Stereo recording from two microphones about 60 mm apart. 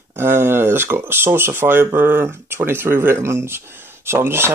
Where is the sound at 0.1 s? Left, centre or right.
Right.